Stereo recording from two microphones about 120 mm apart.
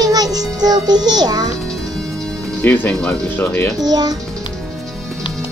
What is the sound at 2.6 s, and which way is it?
Speech, 15° left (ahead or behind).